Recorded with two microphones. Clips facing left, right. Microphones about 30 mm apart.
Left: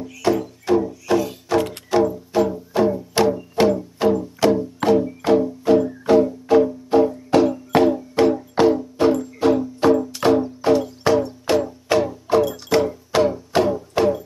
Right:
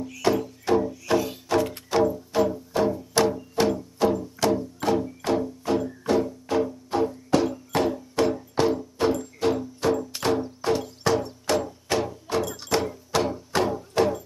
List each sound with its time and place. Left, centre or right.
0.0 s music: centre